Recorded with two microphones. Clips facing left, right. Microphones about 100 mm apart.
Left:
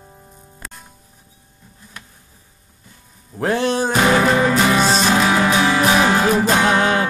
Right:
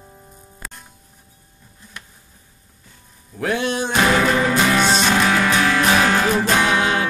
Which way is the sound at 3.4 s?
40° left (ahead or behind).